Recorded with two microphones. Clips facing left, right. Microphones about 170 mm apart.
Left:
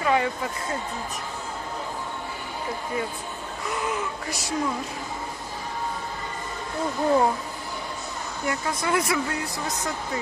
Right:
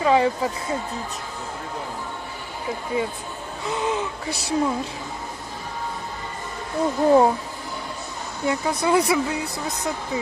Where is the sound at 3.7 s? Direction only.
25° right (ahead or behind).